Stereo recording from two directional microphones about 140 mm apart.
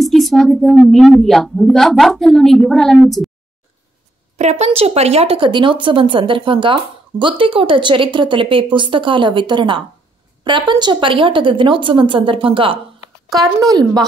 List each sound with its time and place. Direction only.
0.0 s a sound: centre (ahead or behind)
1.2 s a woman's voice: centre (ahead or behind)
4.4 s speech: 55° right (ahead or behind)
13.6 s speech: 25° right (ahead or behind)